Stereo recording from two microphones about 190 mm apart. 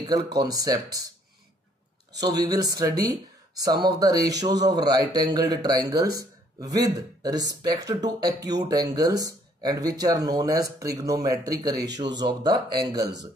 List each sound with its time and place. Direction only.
0.0 s speech: 20° right (ahead or behind)
2.1 s speech: 20° right (ahead or behind)